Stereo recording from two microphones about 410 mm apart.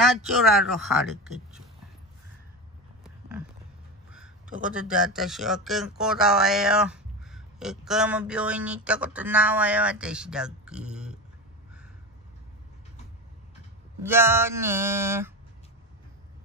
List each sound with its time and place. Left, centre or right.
0.0 s speech: centre
4.5 s speech: centre
4.8 s speech: centre
14.0 s speech: centre